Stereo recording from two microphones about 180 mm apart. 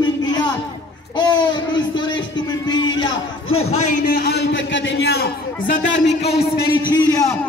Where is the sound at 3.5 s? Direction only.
40° left (ahead or behind); by 6.1 s 90° left.